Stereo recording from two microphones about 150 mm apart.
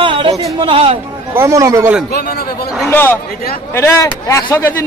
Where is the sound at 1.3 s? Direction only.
20° right (ahead or behind).